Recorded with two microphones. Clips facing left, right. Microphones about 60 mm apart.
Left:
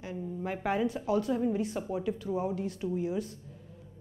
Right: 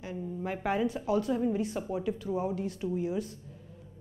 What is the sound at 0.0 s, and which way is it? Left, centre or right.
Speech, centre.